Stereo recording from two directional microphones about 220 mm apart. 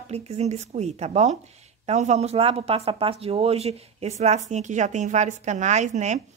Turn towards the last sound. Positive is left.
turn(degrees=-35)  # may be behind; listen again after turning